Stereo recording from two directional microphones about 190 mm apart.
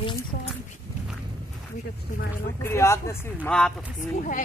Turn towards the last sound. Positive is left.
turn(degrees=45)  # may be behind; listen again after turning